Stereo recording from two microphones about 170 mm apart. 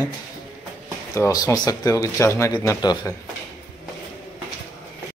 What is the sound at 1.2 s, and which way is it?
Speech, 20° left (ahead or behind).